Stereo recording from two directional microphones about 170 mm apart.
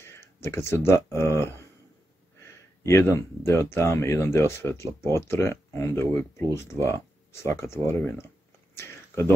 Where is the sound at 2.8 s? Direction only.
15° left (ahead or behind).